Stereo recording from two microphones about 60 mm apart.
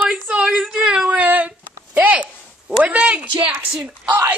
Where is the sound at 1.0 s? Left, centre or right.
Right.